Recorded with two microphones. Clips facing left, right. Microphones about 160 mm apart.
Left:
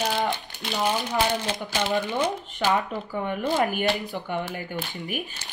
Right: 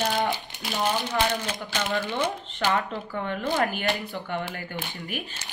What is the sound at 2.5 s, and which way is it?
Speech, 15° left (ahead or behind).